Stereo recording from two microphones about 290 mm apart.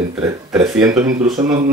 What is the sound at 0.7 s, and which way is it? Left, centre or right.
Speech, centre.